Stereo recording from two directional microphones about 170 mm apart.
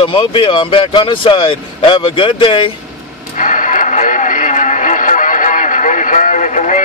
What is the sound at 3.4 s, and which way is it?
Radio, 45° left (ahead or behind).